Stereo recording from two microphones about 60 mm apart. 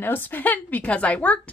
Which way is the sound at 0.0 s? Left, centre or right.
Left.